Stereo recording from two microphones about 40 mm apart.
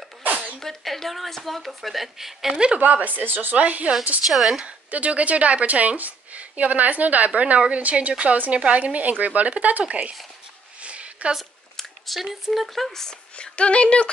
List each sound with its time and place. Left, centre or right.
0.2 s sneeze: right
0.6 s speech: centre
2.8 s speech: right
3.2 s speech: right
3.5 s a woman's voice: right
4.3 s speech: centre
4.6 s a woman's voice: right
10.8 s a sound: right
12.2 s speech: centre
12.6 s speech: centre
13.4 s a woman's voice: left